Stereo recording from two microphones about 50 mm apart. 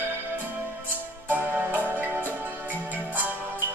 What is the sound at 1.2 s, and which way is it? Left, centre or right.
Music, right.